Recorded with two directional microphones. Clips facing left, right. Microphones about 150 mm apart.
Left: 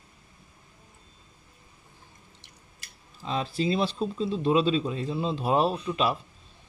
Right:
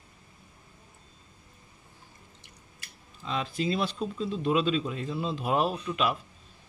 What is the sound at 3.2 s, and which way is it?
Speech, 35° left (ahead or behind).